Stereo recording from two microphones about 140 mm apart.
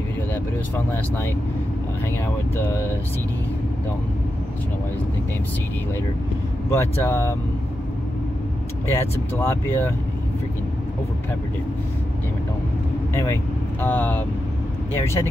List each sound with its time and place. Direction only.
0.7 s speech: 15° left (ahead or behind)
6.7 s speech: 20° left (ahead or behind)
8.9 s speech: 15° left (ahead or behind)
13.1 s speech: 20° left (ahead or behind)